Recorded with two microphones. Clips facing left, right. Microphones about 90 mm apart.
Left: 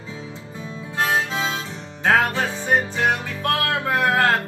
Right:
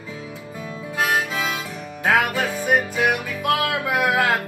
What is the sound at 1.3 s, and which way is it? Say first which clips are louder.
Music: even; 30° left (ahead or behind).